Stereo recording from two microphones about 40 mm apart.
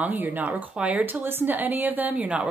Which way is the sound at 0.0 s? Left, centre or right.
Right.